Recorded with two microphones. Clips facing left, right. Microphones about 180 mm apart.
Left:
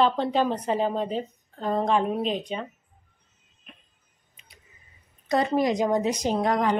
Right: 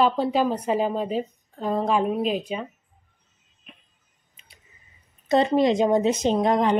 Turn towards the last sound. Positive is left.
turn(degrees=-20)  # may be behind; listen again after turning